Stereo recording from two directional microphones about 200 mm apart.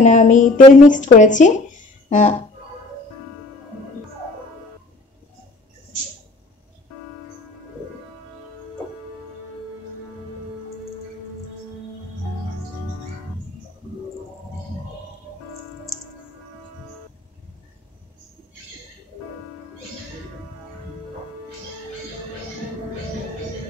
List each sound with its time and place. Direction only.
0.0 s a woman's voice: 40° left (ahead or behind)